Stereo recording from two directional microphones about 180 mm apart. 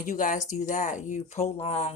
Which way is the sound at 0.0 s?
45° left (ahead or behind).